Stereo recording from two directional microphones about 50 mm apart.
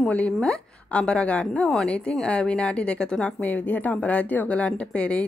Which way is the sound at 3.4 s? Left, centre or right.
Left.